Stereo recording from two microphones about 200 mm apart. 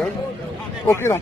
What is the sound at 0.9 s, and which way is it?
Speech, 15° left (ahead or behind).